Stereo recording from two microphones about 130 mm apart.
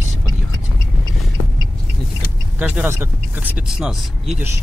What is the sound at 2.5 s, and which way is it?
Speech, 15° right (ahead or behind).